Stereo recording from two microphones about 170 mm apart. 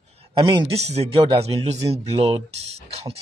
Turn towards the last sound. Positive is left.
turn(degrees=-35)  # may be behind; listen again after turning